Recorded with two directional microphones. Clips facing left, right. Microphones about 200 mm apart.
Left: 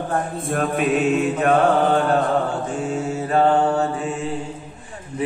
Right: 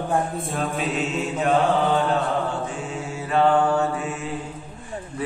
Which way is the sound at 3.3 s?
40° left (ahead or behind).